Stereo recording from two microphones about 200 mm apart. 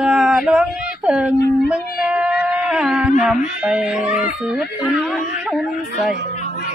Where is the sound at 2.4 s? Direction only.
5° right (ahead or behind).